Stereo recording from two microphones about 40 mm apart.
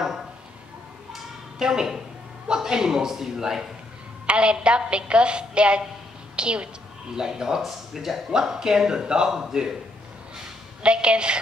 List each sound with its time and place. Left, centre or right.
1.6 s speech: centre
4.3 s a woman's voice: right
10.8 s a woman's voice: right